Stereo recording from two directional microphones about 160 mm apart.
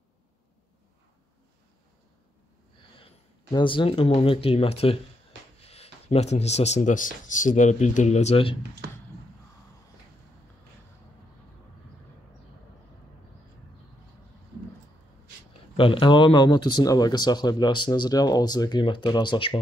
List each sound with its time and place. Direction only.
3.5 s speech: 30° left (ahead or behind)
15.7 s speech: 35° left (ahead or behind)